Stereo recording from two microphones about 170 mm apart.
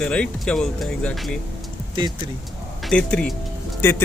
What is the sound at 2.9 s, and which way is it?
Speech, 5° left (ahead or behind).